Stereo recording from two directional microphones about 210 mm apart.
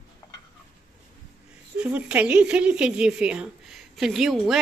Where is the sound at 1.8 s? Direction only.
5° right (ahead or behind).